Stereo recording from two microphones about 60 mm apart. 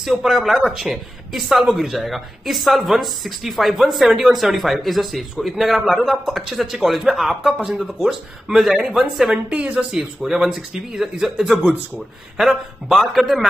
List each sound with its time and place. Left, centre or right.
0.0 s a man's voice: centre
9.5 s speech: right
9.8 s a man's voice: centre